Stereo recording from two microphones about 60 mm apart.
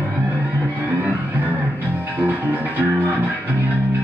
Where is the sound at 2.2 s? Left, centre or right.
Right.